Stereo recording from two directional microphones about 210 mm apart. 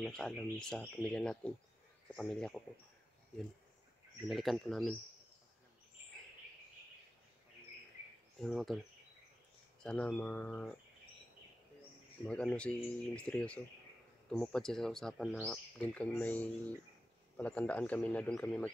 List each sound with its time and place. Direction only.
0.0 s speech: centre (ahead or behind)
4.3 s speech: centre (ahead or behind)
8.4 s speech: centre (ahead or behind)
9.8 s a man's voice: 5° left (ahead or behind)
12.3 s a man's voice: 5° left (ahead or behind)